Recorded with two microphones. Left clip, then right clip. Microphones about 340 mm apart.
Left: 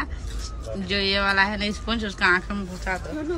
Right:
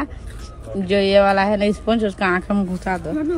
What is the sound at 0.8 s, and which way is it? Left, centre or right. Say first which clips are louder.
Speech: right 8 dB; centre.